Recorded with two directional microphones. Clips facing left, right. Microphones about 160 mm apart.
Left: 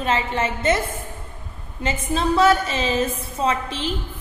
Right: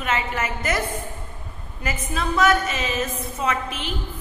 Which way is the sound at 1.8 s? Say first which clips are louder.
Left 4 dB; 25° left (ahead or behind).